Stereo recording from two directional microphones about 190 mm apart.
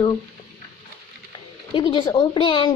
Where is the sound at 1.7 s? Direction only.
25° left (ahead or behind).